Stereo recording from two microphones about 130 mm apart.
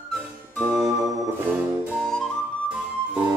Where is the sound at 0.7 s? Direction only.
20° right (ahead or behind).